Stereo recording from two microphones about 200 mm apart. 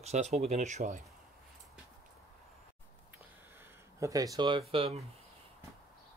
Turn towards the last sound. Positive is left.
turn(degrees=-30)  # may be behind; listen again after turning